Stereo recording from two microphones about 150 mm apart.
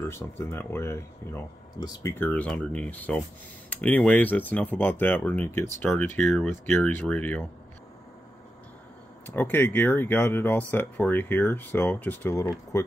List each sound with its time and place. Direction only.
0.0 s speech: 15° left (ahead or behind)
2.1 s speech: 10° left (ahead or behind)
9.2 s speech: 15° left (ahead or behind)